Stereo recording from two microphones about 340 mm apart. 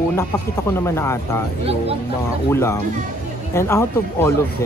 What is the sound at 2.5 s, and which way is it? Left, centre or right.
Speech, centre.